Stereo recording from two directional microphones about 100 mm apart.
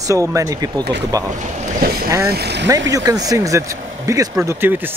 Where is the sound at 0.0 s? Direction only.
35° right (ahead or behind).